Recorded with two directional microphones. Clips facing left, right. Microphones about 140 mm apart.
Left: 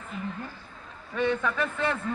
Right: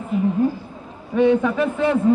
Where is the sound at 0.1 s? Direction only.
10° right (ahead or behind).